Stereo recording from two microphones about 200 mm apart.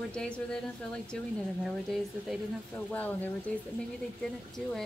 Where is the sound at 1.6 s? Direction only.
Centre (ahead or behind).